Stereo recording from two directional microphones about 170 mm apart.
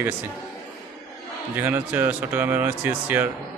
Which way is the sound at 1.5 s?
10° right (ahead or behind).